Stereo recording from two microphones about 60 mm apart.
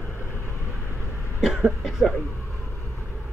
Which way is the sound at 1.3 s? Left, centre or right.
Centre.